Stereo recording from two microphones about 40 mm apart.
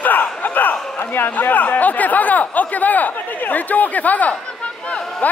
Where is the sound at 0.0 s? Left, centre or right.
Left.